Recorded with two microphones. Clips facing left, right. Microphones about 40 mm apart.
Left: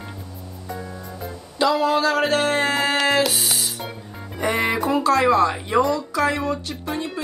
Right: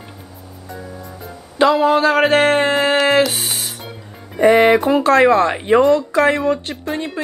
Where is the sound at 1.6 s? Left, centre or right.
Right.